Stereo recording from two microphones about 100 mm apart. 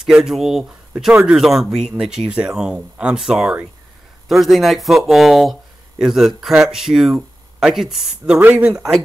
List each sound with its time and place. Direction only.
0.0 s speech: 5° right (ahead or behind)
8.4 s speech: 15° right (ahead or behind)